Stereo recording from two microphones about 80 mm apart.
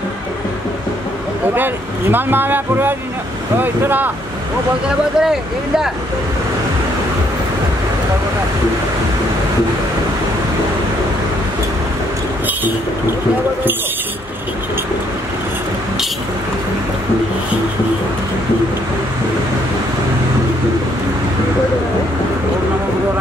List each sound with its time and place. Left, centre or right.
1.5 s speech: right
4.8 s speech: centre